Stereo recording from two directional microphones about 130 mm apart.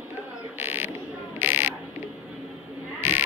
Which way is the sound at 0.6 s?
15° right (ahead or behind).